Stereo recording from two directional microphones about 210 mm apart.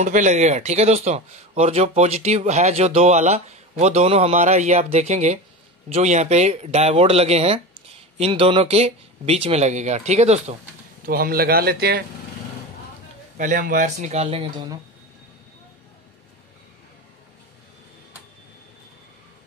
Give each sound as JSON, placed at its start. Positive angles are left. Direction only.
{"t": 0.0, "sound": "speech", "side_deg": -35}
{"t": 11.1, "sound": "a man's voice", "side_deg": -45}
{"t": 13.4, "sound": "speech", "side_deg": -40}